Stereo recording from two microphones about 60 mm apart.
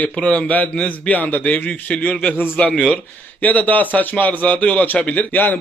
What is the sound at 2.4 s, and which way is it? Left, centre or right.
A man's voice, left.